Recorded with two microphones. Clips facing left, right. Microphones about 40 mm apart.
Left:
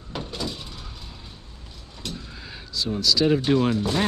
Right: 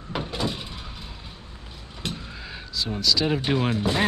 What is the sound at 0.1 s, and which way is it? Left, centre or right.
Vehicle, right.